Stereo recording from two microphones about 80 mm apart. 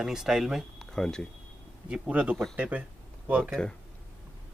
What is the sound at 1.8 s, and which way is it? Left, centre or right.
Speech, centre.